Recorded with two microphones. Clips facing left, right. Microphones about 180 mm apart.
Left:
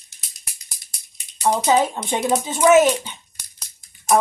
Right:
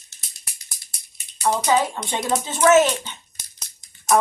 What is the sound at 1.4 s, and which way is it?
A woman's voice, 20° left (ahead or behind).